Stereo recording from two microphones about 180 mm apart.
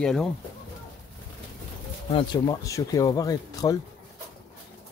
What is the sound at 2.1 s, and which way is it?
Speech, 30° left (ahead or behind).